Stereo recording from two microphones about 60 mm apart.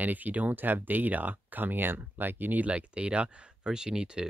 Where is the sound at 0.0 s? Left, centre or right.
Right.